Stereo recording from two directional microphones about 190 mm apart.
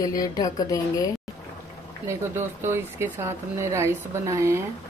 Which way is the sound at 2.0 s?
15° right (ahead or behind).